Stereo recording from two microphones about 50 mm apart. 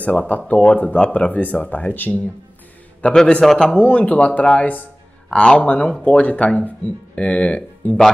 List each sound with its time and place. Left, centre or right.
0.0 s speech: left
3.4 s speech: centre
3.9 s speech: left
5.3 s speech: centre
7.8 s speech: left